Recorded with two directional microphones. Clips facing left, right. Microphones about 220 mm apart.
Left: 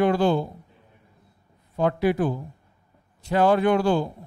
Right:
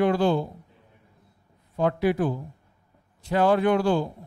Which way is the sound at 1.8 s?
15° left (ahead or behind).